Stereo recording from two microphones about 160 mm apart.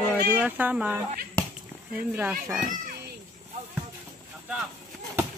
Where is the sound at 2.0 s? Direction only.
10° right (ahead or behind).